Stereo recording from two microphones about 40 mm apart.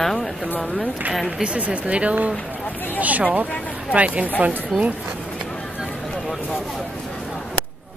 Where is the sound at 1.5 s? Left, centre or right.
Right.